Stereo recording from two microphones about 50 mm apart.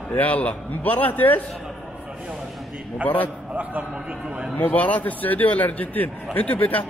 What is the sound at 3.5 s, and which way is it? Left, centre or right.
Speech, right.